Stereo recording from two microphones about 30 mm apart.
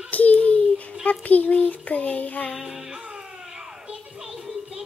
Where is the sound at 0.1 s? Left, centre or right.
Left.